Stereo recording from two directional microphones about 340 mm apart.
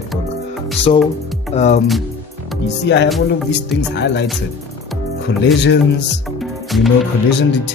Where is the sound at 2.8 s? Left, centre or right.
Left.